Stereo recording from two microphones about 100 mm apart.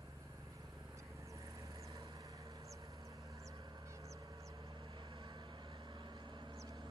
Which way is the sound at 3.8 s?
30° right (ahead or behind).